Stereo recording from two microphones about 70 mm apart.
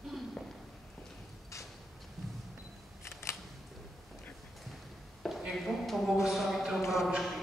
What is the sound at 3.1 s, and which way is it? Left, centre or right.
Camera, left.